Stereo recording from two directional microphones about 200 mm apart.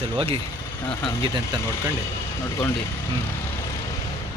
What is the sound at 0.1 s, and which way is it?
Speech, 30° right (ahead or behind).